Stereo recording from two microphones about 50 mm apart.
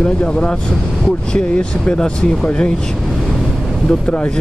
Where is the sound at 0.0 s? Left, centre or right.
Left.